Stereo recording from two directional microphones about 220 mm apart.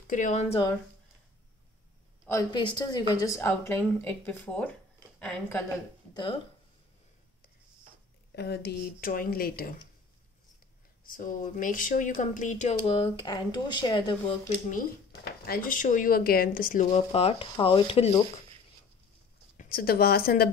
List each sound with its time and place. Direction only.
0.0 s speech: 35° left (ahead or behind)
2.2 s speech: 15° left (ahead or behind)
6.1 s speech: 20° left (ahead or behind)
8.4 s speech: 50° left (ahead or behind)
11.1 s speech: 40° left (ahead or behind); by 14.4 s 20° left (ahead or behind)
15.4 s speech: 40° left (ahead or behind); by 18.2 s 25° left (ahead or behind)
19.5 s speech: 40° left (ahead or behind)